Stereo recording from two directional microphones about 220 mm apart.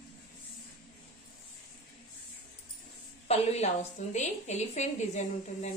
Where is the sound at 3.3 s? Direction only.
30° left (ahead or behind).